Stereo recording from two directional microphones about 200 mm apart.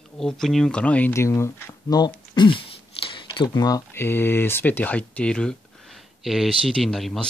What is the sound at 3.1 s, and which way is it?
Speech, 25° left (ahead or behind).